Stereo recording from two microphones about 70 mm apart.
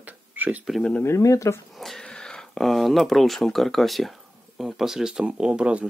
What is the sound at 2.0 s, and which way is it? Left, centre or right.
Speech, centre.